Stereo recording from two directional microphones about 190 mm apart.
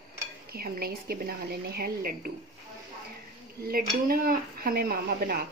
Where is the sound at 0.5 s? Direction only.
50° right (ahead or behind).